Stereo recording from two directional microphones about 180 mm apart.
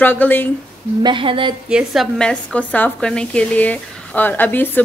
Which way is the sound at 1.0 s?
30° right (ahead or behind).